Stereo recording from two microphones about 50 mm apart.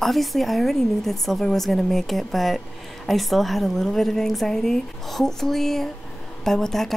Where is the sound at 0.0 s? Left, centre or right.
Centre.